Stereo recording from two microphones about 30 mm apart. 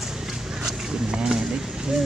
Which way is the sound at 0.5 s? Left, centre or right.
Centre.